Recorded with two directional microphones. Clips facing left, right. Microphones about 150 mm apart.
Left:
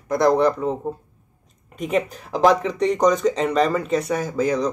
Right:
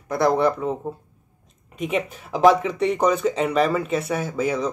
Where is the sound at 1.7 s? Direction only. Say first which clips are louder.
Left 2 dB; centre (ahead or behind).